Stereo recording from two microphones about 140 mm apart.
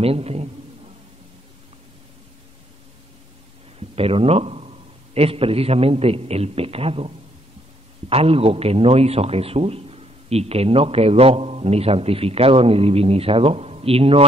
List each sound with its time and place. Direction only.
0.0 s a man's voice: 45° right (ahead or behind)
3.9 s a man's voice: 45° right (ahead or behind)
8.1 s a man's voice: 45° right (ahead or behind)